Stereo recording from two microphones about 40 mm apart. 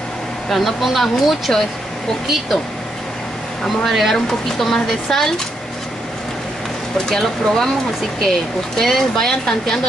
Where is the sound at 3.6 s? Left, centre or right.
Centre.